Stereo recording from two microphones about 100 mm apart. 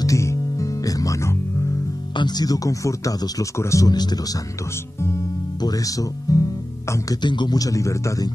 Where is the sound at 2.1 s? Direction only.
45° left (ahead or behind).